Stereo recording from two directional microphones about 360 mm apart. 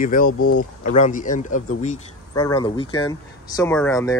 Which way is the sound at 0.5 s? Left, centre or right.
Centre.